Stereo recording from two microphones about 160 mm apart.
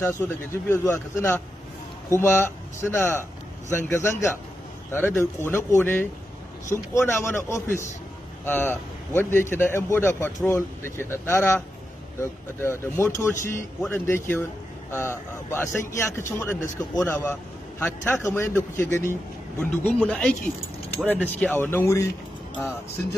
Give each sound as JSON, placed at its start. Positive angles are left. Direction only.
{"t": 0.0, "sound": "a man's voice", "side_deg": 15}